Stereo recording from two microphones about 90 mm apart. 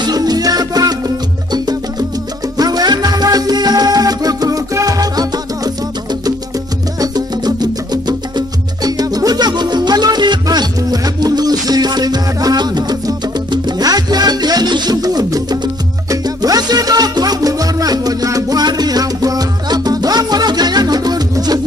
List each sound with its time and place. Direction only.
0.0 s music: 45° right (ahead or behind)
7.0 s music: 50° right (ahead or behind)